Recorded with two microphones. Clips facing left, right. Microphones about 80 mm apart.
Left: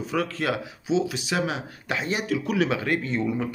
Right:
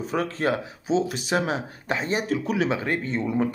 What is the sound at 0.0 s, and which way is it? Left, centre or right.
Speech, right.